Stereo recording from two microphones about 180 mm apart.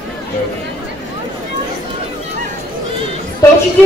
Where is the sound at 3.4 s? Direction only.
15° left (ahead or behind).